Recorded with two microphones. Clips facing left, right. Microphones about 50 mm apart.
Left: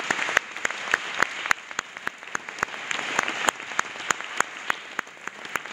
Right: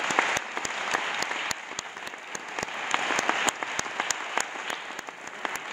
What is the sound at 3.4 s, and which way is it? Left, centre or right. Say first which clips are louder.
Applause: left 3 dB; left.